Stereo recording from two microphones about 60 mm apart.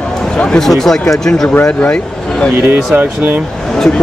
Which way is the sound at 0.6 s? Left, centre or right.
Centre.